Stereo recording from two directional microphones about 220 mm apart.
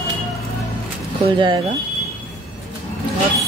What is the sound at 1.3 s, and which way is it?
Speech, 20° right (ahead or behind).